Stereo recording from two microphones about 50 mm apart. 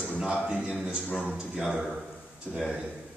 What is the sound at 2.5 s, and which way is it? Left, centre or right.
Speech, centre.